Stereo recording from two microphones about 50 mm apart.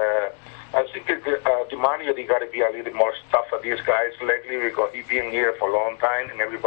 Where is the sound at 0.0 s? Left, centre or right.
Right.